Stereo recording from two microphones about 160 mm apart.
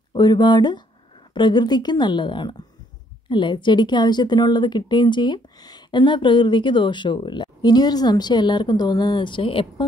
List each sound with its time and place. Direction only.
0.1 s a woman's voice: 30° left (ahead or behind)